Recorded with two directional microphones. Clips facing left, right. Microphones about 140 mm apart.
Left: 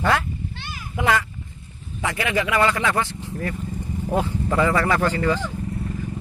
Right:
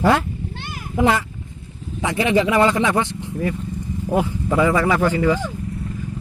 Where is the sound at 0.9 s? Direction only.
30° right (ahead or behind).